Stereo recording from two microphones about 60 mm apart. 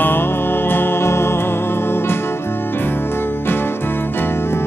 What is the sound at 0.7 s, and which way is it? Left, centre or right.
Music, left.